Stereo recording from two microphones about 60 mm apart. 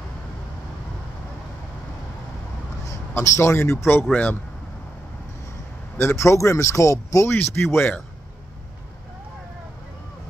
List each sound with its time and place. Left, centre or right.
2.8 s speech: left
4.1 s speech: left
5.9 s speech: left
7.2 s speech: left